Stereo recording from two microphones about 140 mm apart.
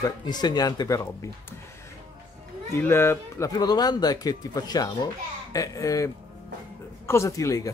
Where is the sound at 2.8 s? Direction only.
15° left (ahead or behind).